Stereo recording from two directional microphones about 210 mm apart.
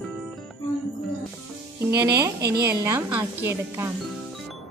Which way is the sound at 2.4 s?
50° right (ahead or behind).